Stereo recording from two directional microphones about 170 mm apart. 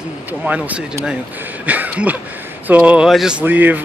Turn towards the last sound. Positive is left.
turn(degrees=-10)  # may be behind; listen again after turning